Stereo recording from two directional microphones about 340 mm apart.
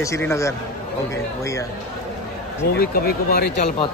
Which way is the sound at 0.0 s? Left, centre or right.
Centre.